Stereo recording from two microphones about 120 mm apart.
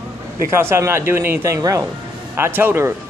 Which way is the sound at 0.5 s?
20° right (ahead or behind).